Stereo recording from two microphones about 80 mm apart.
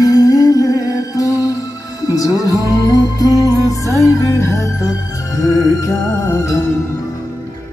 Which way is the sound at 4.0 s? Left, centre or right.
Left.